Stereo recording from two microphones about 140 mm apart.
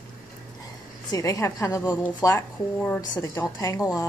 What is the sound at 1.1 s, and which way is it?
A woman's voice, 25° left (ahead or behind).